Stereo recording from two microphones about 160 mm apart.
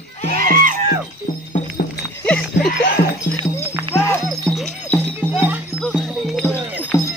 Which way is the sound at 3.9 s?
15° left (ahead or behind).